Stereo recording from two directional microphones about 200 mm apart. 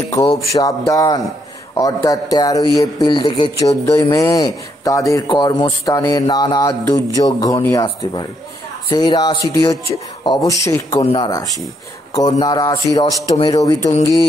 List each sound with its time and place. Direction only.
0.6 s a man's voice: 15° left (ahead or behind)
13.0 s speech: 30° left (ahead or behind)
13.5 s speech: 20° left (ahead or behind)